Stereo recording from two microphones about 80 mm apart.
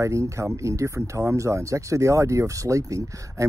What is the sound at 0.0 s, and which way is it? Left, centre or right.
Speech, right.